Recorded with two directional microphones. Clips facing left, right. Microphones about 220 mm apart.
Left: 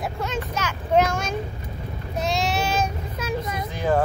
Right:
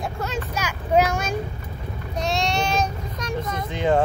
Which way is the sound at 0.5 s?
10° right (ahead or behind).